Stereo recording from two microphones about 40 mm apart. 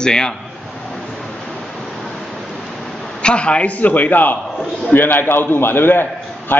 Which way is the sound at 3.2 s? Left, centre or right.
Left.